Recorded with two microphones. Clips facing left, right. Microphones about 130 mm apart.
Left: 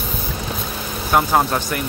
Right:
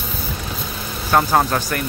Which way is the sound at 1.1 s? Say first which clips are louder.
Even; 10° left (ahead or behind).